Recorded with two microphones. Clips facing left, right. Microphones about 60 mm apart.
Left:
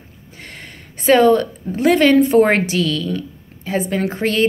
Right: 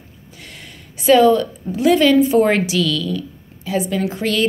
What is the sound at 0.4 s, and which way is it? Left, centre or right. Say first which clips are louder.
A woman's voice: left 3 dB; left.